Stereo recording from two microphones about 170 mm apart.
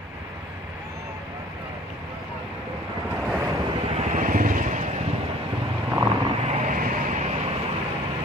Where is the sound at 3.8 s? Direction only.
40° right (ahead or behind).